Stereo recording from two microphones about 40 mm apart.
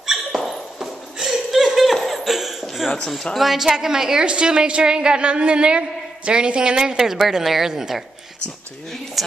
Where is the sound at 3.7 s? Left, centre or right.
Centre.